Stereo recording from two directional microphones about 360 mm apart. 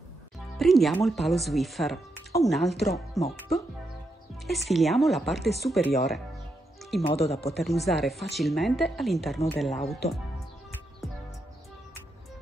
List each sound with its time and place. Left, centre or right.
0.6 s speech: centre
4.5 s speech: centre
6.8 s music: centre
7.1 s speech: centre
7.5 s speech: centre